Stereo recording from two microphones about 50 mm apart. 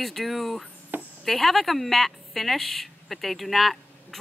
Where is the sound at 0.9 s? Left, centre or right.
Right.